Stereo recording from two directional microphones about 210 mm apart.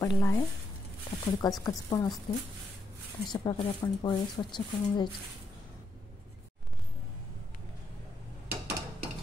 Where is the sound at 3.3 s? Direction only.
20° left (ahead or behind).